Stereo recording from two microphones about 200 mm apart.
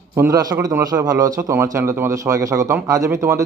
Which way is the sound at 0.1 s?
15° right (ahead or behind).